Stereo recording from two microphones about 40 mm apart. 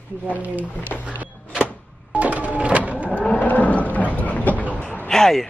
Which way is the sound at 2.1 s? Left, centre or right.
Right.